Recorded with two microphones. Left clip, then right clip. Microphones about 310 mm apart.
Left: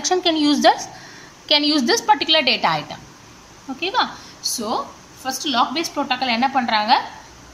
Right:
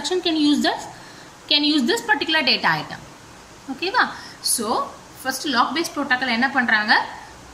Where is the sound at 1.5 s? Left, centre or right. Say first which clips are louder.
Left 2 dB; centre.